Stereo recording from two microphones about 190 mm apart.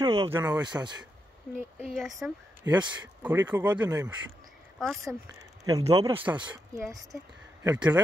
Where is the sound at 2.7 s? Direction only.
20° right (ahead or behind).